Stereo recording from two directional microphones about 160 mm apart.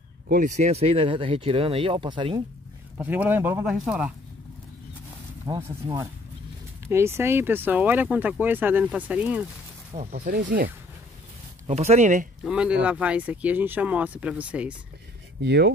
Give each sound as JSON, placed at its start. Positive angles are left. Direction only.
{"t": 0.3, "sound": "speech", "side_deg": -50}
{"t": 3.0, "sound": "speech", "side_deg": -10}
{"t": 5.5, "sound": "speech", "side_deg": -25}
{"t": 6.9, "sound": "speech", "side_deg": -15}
{"t": 10.1, "sound": "speech", "side_deg": -65}
{"t": 11.6, "sound": "speech", "side_deg": -45}
{"t": 12.4, "sound": "speech", "side_deg": -5}
{"t": 15.4, "sound": "speech", "side_deg": -90}